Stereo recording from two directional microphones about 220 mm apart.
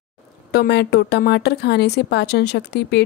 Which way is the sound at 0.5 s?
50° left (ahead or behind).